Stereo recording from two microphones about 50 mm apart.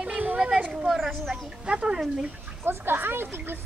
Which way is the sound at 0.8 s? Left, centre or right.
Centre.